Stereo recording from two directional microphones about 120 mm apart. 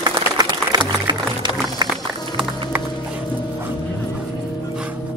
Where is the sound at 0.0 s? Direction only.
35° right (ahead or behind).